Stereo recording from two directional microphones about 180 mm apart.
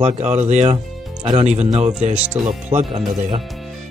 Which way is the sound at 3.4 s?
Centre (ahead or behind).